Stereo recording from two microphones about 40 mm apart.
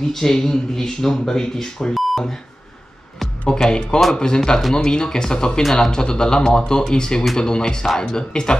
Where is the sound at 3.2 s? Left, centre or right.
Centre.